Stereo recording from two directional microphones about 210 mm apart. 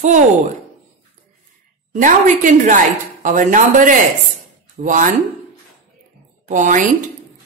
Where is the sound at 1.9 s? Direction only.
40° right (ahead or behind).